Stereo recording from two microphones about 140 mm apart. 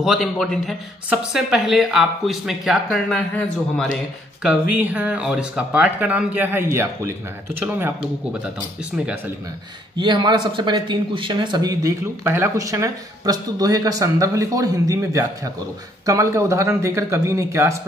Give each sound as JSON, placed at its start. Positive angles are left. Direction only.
{"t": 0.0, "sound": "speech", "side_deg": 0}
{"t": 4.4, "sound": "speech", "side_deg": -10}
{"t": 9.9, "sound": "speech", "side_deg": -35}
{"t": 12.3, "sound": "speech", "side_deg": -20}